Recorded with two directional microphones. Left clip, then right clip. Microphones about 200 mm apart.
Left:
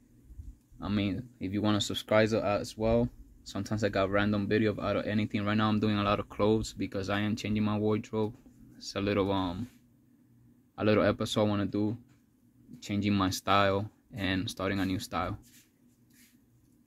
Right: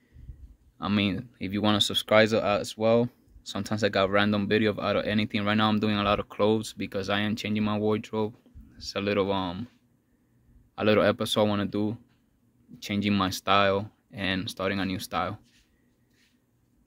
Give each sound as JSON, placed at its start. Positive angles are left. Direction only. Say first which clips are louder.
{"t": 0.7, "sound": "speech", "louder": "right 6 dB", "side_deg": -30}
{"t": 10.7, "sound": "speech", "louder": "right 4 dB", "side_deg": -15}